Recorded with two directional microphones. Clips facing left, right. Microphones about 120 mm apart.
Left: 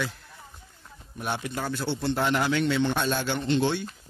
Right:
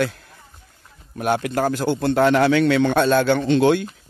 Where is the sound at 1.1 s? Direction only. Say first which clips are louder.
Right 10 dB; 75° right (ahead or behind).